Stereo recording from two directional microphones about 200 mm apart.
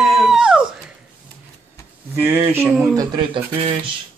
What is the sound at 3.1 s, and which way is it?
Speech, 25° right (ahead or behind).